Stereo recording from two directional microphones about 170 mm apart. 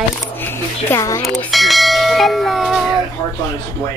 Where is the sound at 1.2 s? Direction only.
Centre (ahead or behind).